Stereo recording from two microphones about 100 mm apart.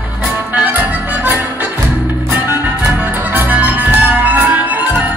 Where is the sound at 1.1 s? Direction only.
15° right (ahead or behind).